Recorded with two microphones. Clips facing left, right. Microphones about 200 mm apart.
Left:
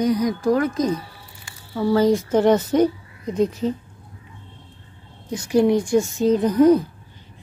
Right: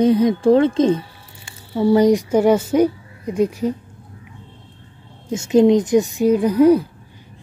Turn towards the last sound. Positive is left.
turn(degrees=-10)  # may be behind; listen again after turning